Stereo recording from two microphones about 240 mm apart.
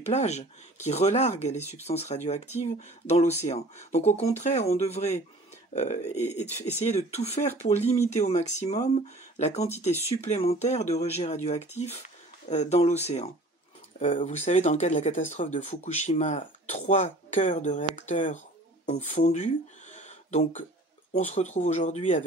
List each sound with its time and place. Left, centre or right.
0.0 s speech: left